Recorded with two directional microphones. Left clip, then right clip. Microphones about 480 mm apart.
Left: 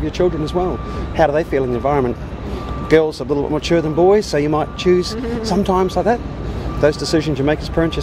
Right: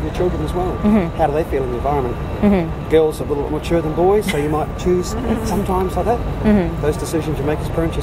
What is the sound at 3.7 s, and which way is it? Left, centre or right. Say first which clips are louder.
Speech: left 2 dB; left.